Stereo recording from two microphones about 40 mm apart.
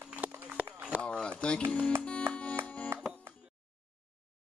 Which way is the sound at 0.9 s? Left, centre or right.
Left.